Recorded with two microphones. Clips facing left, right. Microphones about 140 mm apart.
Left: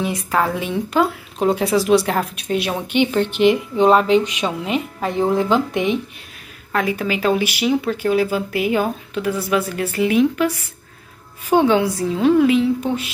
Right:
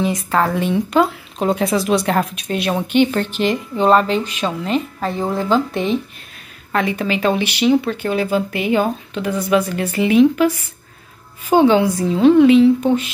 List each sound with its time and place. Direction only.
0.0 s speech: 10° left (ahead or behind)
6.7 s speech: 5° left (ahead or behind)
11.5 s speech: centre (ahead or behind)